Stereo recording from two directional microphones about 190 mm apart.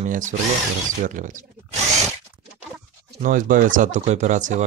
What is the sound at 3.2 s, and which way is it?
Speech, 45° right (ahead or behind).